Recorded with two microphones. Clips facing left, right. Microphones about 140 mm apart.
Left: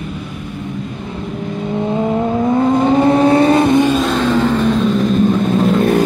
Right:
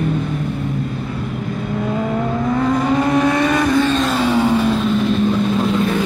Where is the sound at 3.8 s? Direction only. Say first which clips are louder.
Left 3 dB; 10° left (ahead or behind).